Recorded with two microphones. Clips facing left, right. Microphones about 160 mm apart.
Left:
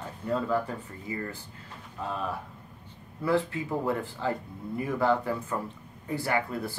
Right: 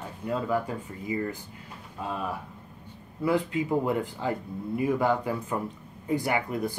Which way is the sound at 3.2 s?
15° right (ahead or behind).